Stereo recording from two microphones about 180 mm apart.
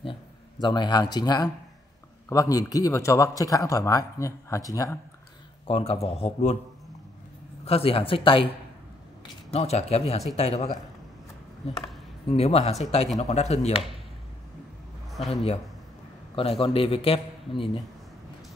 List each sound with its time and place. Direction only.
0.0 s a man's voice: 25° left (ahead or behind)
5.7 s a man's voice: 35° left (ahead or behind)
7.6 s a man's voice: 35° left (ahead or behind)
9.5 s a man's voice: 35° left (ahead or behind)
15.2 s a man's voice: 35° left (ahead or behind)